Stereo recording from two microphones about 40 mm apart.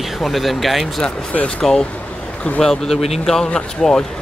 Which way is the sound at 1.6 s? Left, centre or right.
Centre.